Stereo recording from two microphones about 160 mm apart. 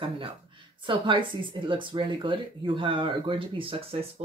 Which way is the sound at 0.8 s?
30° right (ahead or behind).